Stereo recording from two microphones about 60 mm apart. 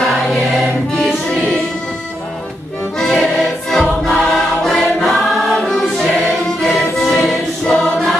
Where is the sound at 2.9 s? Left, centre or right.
Centre.